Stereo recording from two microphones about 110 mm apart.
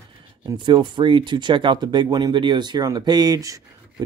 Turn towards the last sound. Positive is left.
turn(degrees=-35)  # may be behind; listen again after turning